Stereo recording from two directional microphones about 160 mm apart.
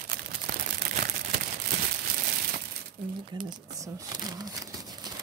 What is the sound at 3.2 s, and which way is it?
Speech, 25° right (ahead or behind).